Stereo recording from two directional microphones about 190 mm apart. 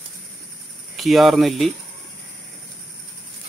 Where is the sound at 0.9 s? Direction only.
Centre (ahead or behind).